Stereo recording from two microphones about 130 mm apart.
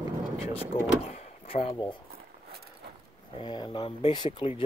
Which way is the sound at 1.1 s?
50° left (ahead or behind).